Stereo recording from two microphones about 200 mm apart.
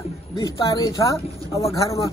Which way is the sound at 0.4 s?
15° left (ahead or behind).